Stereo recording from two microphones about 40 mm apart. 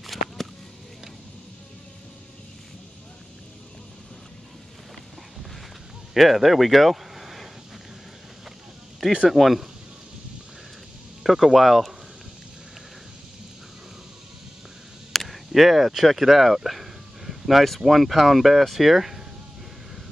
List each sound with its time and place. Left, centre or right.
0.0 s a sound: centre
6.1 s speech: centre
9.3 s speech: centre
11.2 s speech: centre
15.1 s speech: centre